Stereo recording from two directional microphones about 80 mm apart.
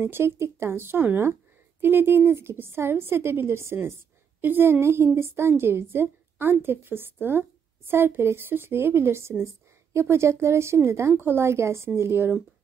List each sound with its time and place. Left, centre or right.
0.0 s a woman's voice: right